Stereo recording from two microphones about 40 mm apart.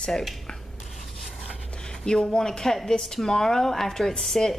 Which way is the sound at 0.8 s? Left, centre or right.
Centre.